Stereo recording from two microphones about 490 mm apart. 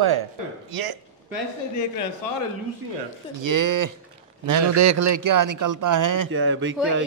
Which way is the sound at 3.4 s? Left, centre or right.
Right.